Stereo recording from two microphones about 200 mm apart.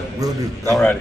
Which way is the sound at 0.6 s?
10° left (ahead or behind).